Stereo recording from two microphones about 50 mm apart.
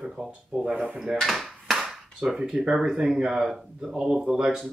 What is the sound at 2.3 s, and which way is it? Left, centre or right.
Speech, centre.